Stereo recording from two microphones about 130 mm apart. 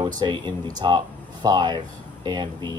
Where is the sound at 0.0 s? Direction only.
35° right (ahead or behind).